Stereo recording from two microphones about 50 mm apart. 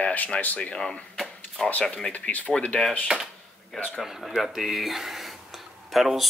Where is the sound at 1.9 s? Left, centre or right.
Left.